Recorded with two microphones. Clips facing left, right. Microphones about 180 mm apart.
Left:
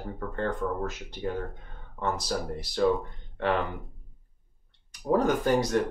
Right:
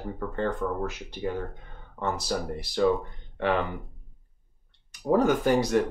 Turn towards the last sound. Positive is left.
turn(degrees=-10)  # may be behind; listen again after turning